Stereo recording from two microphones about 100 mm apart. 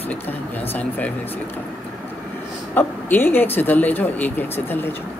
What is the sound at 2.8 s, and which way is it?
Speech, 20° left (ahead or behind).